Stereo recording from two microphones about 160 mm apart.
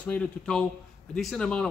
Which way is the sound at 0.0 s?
10° left (ahead or behind).